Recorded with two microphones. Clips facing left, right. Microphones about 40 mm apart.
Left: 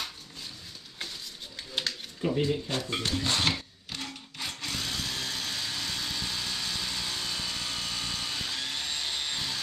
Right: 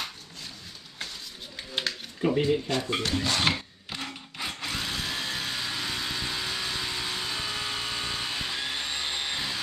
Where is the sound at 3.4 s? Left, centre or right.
Centre.